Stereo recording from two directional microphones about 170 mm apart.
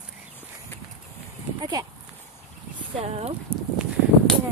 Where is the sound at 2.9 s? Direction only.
35° right (ahead or behind).